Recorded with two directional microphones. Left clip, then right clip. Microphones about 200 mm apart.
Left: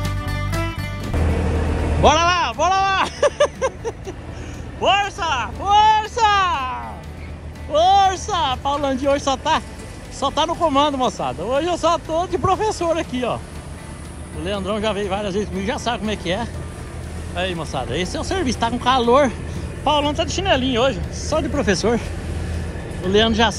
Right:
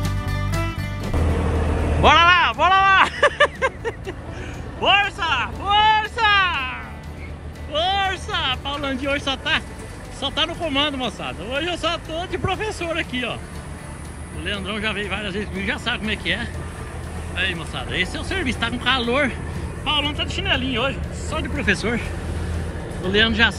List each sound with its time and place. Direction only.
0.0 s music: centre (ahead or behind)
1.3 s vehicle: 30° right (ahead or behind)
2.0 s a sound: 15° left (ahead or behind)
7.7 s speech: 20° left (ahead or behind)
14.4 s speech: 15° left (ahead or behind)
23.1 s speech: 15° left (ahead or behind)